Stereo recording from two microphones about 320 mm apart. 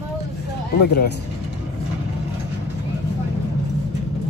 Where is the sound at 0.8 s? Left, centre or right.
Left.